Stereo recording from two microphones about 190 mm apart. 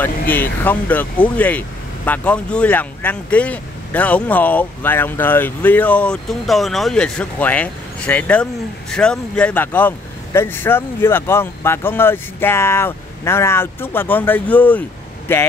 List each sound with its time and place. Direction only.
0.3 s speech: 10° left (ahead or behind)